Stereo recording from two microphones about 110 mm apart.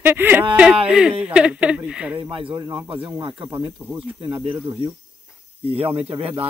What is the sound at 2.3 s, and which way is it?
Speech, 55° right (ahead or behind).